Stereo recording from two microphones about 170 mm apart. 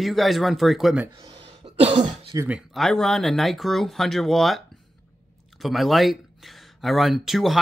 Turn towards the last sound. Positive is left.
turn(degrees=0)  # may be behind; listen again after turning